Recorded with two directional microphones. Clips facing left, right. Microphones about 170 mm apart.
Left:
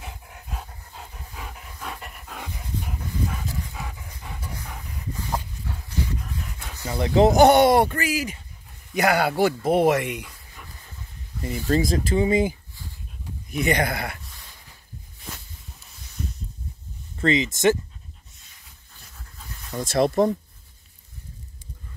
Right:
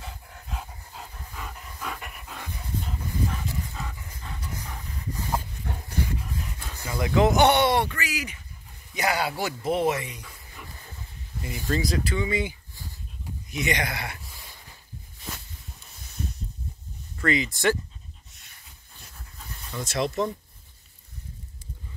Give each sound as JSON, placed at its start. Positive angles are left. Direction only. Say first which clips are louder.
{"t": 0.0, "sound": "dog", "louder": "left 2 dB", "side_deg": 20}
{"t": 0.5, "sound": "dog", "louder": "even", "side_deg": 0}
{"t": 2.3, "sound": "dog", "louder": "left 1 dB", "side_deg": 10}
{"t": 5.4, "sound": "dog", "louder": "even", "side_deg": -55}
{"t": 6.8, "sound": "speech", "louder": "left 4 dB", "side_deg": 30}
{"t": 8.9, "sound": "speech", "louder": "left 6 dB", "side_deg": 55}
{"t": 11.4, "sound": "speech", "louder": "left 5 dB", "side_deg": 45}
{"t": 17.2, "sound": "speech", "louder": "left 4 dB", "side_deg": 20}
{"t": 19.7, "sound": "speech", "louder": "left 7 dB", "side_deg": 50}